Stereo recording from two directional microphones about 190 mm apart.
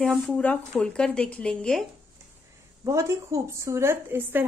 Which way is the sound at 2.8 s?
15° right (ahead or behind).